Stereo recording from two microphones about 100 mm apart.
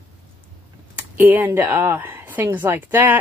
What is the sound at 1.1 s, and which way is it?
A woman's voice, 20° right (ahead or behind).